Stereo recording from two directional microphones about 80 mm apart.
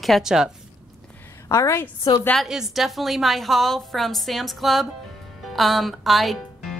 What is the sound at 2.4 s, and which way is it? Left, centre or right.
Speech, centre.